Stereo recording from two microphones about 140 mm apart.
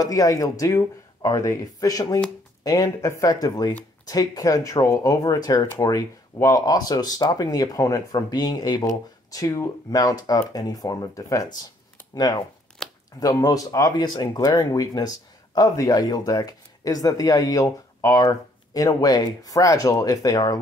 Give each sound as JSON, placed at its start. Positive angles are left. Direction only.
{"t": 0.0, "sound": "speech", "side_deg": 25}
{"t": 12.8, "sound": "a sound", "side_deg": 5}
{"t": 13.2, "sound": "speech", "side_deg": 25}